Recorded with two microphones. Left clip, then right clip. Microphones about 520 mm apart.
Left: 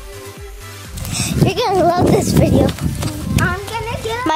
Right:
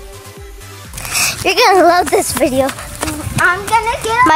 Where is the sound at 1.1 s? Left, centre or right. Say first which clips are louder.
Right 5 dB; left.